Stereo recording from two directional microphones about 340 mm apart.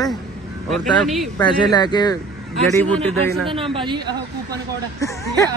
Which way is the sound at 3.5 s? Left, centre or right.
Centre.